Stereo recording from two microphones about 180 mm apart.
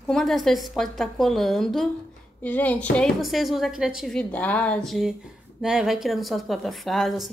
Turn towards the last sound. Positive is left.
turn(degrees=0)  # may be behind; listen again after turning